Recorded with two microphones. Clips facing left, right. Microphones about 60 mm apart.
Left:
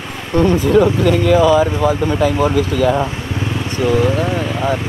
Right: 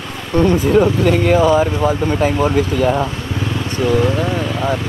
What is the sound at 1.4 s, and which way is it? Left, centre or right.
Speech, right.